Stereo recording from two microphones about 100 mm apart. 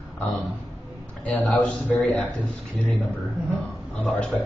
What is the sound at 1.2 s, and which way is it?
A man's voice, 15° left (ahead or behind).